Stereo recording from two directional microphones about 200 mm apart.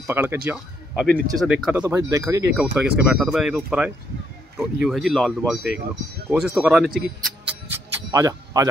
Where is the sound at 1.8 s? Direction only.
15° right (ahead or behind).